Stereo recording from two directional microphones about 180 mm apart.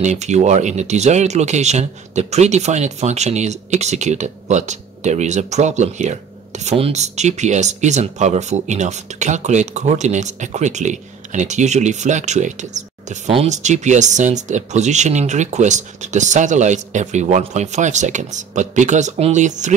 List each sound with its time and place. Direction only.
0.0 s speech: 40° right (ahead or behind)